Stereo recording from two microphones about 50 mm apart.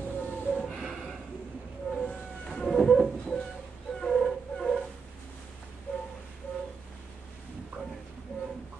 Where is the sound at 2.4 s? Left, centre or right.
Centre.